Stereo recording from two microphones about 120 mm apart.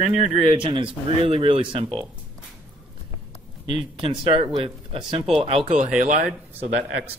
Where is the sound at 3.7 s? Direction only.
50° right (ahead or behind).